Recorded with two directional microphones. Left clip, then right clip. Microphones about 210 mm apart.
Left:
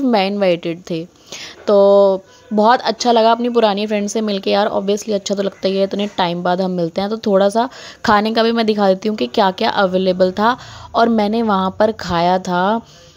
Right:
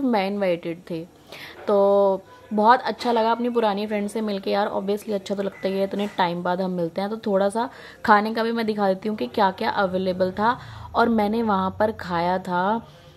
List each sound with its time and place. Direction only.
0.1 s a woman's voice: 35° left (ahead or behind)